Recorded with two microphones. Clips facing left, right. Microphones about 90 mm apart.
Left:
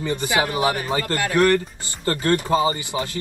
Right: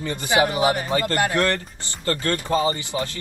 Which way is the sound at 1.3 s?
20° left (ahead or behind).